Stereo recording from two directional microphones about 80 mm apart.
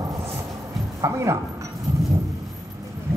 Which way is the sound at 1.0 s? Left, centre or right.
Right.